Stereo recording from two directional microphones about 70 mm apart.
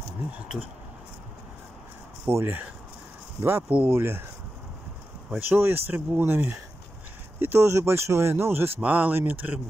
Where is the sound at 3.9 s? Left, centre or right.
Right.